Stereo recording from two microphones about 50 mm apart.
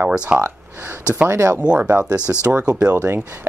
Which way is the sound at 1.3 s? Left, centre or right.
Right.